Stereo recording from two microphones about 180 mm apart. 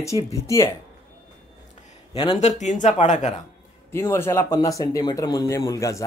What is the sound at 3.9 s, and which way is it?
Speech, 15° left (ahead or behind).